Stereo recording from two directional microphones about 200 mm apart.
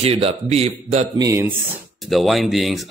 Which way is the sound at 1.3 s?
10° right (ahead or behind).